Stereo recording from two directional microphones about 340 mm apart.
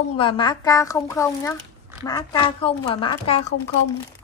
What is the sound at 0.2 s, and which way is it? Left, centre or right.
Speech, centre.